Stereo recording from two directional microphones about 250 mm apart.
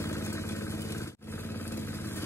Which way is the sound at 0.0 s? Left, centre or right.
Centre.